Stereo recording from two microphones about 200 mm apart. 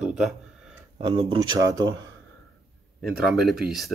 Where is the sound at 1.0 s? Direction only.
25° right (ahead or behind).